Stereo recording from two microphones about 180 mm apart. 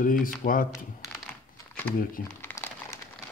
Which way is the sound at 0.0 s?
50° left (ahead or behind).